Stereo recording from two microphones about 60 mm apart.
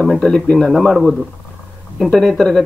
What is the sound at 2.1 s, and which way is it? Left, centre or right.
Speech, centre.